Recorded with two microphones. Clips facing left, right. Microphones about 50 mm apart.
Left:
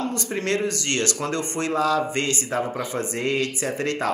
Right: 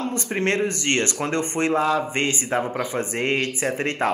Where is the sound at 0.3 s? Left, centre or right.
Right.